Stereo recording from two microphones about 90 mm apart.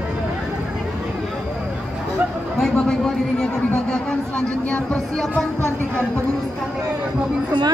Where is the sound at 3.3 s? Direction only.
10° left (ahead or behind).